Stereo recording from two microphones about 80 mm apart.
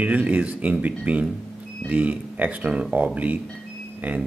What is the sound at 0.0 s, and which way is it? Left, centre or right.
Speech, centre.